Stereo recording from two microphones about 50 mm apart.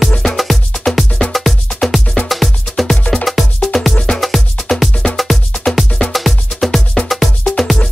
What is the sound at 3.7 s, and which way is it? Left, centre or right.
Music, centre.